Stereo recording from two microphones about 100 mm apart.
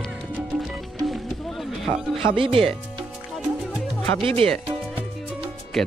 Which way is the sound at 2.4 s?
60° right (ahead or behind).